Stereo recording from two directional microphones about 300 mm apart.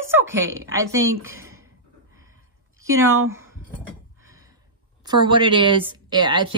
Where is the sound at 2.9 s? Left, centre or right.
Right.